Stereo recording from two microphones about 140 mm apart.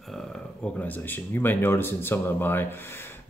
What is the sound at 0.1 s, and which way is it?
Speech, 5° left (ahead or behind).